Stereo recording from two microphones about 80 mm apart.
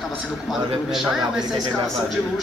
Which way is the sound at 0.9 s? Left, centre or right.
Centre.